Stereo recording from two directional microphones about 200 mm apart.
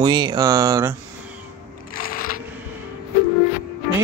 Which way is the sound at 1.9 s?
45° left (ahead or behind).